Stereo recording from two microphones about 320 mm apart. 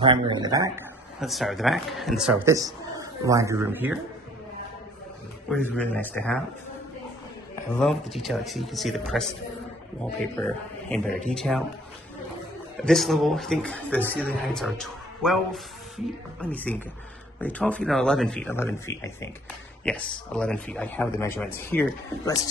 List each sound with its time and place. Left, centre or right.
0.0 s a man's voice: centre
1.2 s speech: centre
5.5 s speech: centre
7.7 s speech: centre
10.4 s speech: centre
12.8 s speech: centre